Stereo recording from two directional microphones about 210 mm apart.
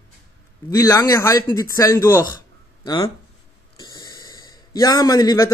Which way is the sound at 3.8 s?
20° left (ahead or behind).